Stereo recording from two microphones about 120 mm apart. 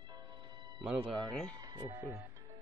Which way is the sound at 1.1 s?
5° left (ahead or behind).